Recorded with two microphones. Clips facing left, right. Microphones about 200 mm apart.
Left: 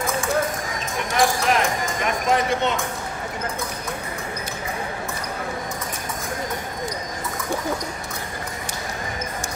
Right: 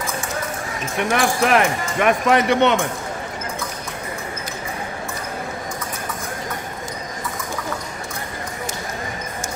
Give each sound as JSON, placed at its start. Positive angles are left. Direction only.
{"t": 1.1, "sound": "speech", "side_deg": -65}